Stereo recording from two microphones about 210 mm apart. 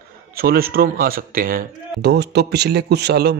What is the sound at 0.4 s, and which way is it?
Speech, 45° right (ahead or behind).